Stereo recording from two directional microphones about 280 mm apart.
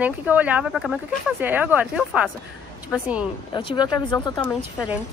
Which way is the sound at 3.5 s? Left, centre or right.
Centre.